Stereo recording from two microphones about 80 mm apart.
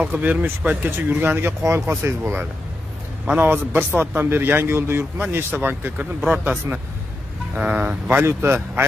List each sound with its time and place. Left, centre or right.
0.0 s a man's voice: centre
1.6 s a man's voice: right; by 6.5 s centre
7.5 s speech: centre
8.1 s a man's voice: right